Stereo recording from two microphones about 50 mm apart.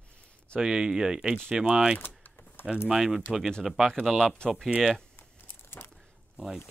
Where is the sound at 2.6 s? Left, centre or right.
Centre.